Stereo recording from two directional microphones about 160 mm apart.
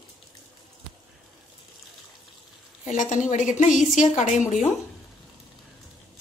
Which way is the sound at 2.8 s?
50° left (ahead or behind).